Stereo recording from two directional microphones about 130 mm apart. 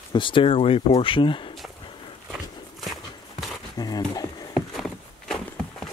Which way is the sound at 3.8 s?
30° left (ahead or behind).